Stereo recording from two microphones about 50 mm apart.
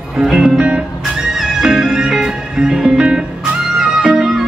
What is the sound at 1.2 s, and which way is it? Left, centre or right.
Music, centre.